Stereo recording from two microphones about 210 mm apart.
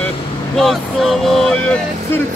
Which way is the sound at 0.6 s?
Centre (ahead or behind).